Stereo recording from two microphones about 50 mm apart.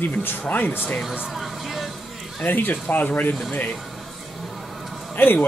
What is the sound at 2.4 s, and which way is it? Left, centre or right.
Speech, left.